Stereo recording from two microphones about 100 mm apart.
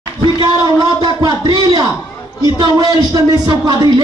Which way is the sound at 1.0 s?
50° right (ahead or behind).